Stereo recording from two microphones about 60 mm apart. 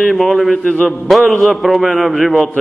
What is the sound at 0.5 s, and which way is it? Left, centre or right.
Speech, centre.